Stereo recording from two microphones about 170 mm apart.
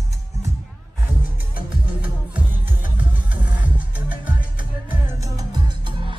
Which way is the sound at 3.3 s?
10° right (ahead or behind).